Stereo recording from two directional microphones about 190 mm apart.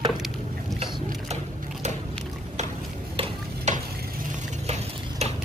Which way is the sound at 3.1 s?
30° right (ahead or behind).